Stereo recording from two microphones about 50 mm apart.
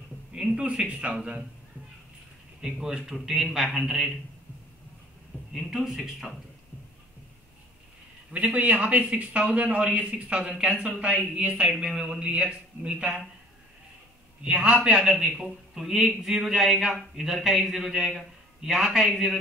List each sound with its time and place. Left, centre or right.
0.3 s speech: right
2.6 s a man's voice: centre
5.5 s a man's voice: centre
8.5 s speech: right
11.8 s speech: centre
14.4 s speech: right
15.4 s a man's voice: centre